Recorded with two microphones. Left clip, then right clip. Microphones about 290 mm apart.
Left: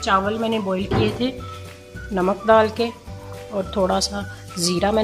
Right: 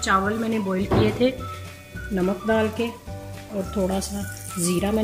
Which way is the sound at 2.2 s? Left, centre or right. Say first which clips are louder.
Left 7 dB; left.